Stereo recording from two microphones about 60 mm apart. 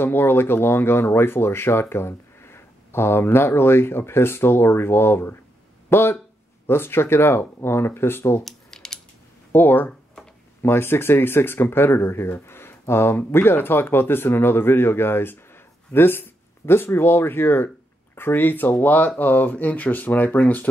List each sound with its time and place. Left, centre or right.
0.0 s speech: left
8.5 s mechanisms: centre
9.5 s speech: left